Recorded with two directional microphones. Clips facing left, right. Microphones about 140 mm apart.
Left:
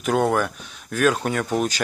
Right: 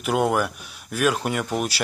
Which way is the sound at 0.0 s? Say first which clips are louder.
Left 1 dB; 5° right (ahead or behind).